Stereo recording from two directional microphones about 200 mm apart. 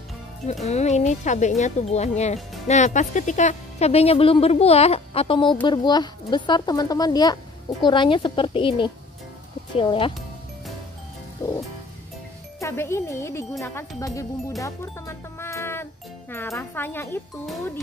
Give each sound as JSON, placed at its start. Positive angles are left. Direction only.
{"t": 0.7, "sound": "a woman's voice", "side_deg": 35}
{"t": 11.4, "sound": "speech", "side_deg": 15}